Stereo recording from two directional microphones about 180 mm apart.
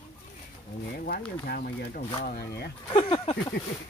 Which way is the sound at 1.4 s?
55° left (ahead or behind).